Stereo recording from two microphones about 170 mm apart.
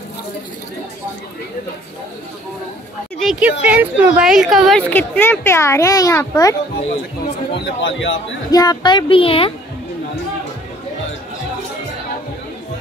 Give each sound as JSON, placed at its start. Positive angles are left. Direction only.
{"t": 3.2, "sound": "a woman's voice", "side_deg": -5}
{"t": 7.5, "sound": "a man's voice", "side_deg": 90}
{"t": 8.5, "sound": "speech", "side_deg": 25}